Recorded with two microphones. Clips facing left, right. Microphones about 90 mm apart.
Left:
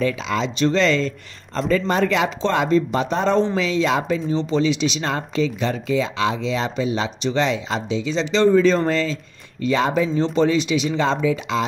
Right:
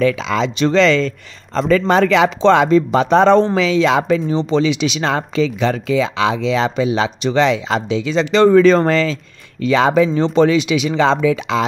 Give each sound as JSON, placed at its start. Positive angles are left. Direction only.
{"t": 0.0, "sound": "speech", "side_deg": -90}
{"t": 4.3, "sound": "speech", "side_deg": -80}